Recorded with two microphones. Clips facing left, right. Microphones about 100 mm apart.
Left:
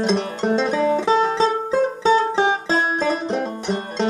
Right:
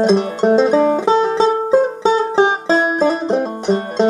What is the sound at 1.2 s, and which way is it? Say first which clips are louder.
Music: right 4 dB; 20° right (ahead or behind).